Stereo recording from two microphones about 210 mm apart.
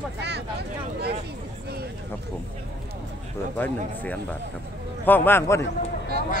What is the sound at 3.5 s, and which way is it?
A man's voice, 5° left (ahead or behind).